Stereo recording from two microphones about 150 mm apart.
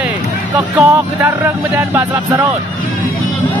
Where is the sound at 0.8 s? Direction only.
20° right (ahead or behind).